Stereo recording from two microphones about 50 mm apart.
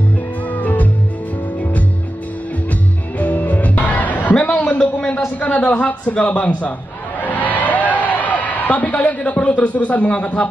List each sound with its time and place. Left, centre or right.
0.5 s music: left
3.2 s music: left
5.4 s a man's voice: left
7.2 s a sound: left